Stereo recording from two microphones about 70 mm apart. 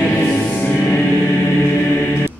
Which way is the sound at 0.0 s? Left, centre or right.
Centre.